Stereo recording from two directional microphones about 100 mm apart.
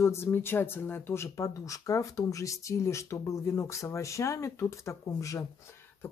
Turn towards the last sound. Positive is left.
turn(degrees=30)  # may be behind; listen again after turning